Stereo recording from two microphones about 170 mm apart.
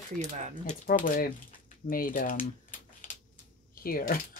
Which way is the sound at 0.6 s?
55° left (ahead or behind).